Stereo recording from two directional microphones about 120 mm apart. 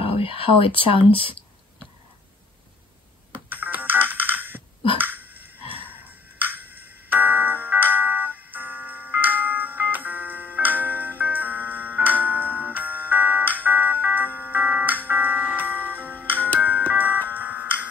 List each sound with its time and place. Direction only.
0.0 s speech: 50° left (ahead or behind)
3.4 s ringtone: 15° right (ahead or behind)
4.9 s a sound: 15° right (ahead or behind)
6.5 s music: 15° right (ahead or behind)
16.0 s music: 15° left (ahead or behind)
17.0 s music: 15° right (ahead or behind)